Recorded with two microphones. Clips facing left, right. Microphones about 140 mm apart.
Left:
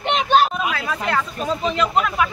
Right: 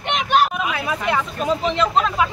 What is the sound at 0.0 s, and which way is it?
Vehicle, 30° left (ahead or behind).